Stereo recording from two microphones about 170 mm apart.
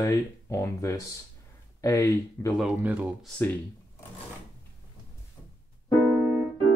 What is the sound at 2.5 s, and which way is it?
Speech, 5° right (ahead or behind).